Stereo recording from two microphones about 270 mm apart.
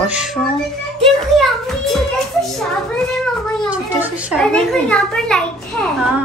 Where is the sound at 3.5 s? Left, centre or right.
Centre.